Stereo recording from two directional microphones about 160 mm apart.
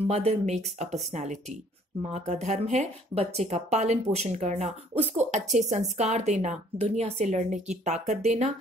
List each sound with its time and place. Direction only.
0.0 s speech: 40° right (ahead or behind)